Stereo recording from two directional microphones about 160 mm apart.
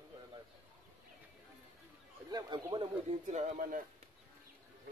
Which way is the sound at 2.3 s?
25° right (ahead or behind).